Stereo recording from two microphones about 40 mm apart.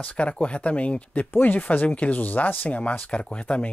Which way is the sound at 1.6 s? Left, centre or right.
Left.